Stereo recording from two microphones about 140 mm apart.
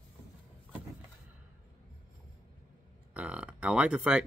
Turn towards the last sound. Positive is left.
turn(degrees=-5)  # may be behind; listen again after turning